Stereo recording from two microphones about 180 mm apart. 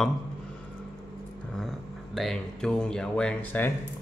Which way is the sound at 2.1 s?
5° left (ahead or behind).